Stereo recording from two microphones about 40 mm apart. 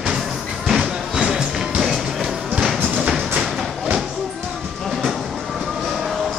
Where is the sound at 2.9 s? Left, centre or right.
Right.